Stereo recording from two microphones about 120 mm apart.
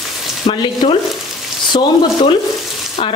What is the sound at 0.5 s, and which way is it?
Speech, 50° left (ahead or behind).